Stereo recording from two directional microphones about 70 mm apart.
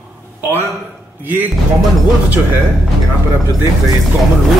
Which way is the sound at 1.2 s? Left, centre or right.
Right.